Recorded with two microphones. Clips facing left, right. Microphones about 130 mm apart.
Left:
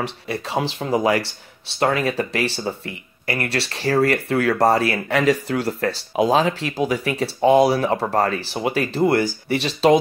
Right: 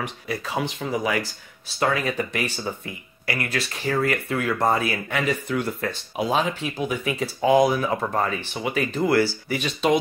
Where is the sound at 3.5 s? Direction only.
35° left (ahead or behind).